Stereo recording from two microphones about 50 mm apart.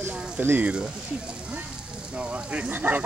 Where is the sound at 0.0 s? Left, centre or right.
Right.